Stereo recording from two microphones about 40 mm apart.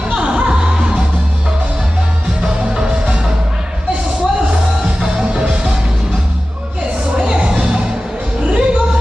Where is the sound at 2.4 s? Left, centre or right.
Centre.